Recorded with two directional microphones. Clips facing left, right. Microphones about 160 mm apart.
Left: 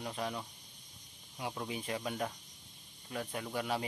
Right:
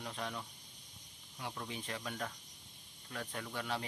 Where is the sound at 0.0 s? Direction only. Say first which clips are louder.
Left 4 dB; 10° left (ahead or behind).